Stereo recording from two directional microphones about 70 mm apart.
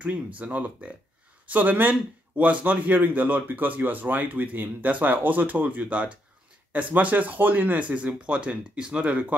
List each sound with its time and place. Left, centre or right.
0.0 s a man's voice: right